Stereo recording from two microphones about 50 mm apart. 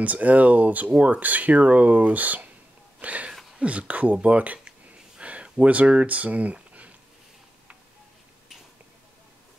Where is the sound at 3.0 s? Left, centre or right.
Right.